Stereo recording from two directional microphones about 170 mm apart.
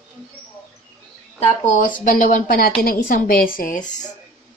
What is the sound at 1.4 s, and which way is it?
A woman's voice, 45° left (ahead or behind).